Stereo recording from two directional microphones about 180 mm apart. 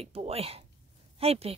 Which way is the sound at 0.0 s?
35° right (ahead or behind).